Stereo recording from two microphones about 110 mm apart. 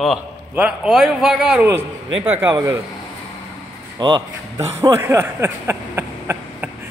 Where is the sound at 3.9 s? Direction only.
40° right (ahead or behind).